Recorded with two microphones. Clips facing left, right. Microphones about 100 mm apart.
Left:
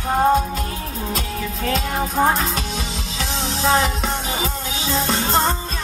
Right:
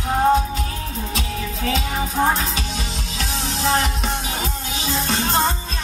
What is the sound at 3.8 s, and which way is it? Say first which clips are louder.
Music: left 2 dB; centre (ahead or behind).